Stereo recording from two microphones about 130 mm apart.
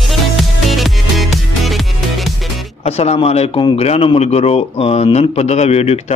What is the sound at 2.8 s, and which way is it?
A man's voice, 55° left (ahead or behind).